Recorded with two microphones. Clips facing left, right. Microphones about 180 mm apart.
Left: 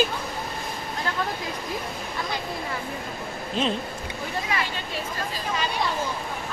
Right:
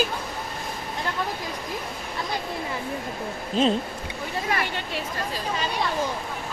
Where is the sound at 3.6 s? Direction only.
35° right (ahead or behind).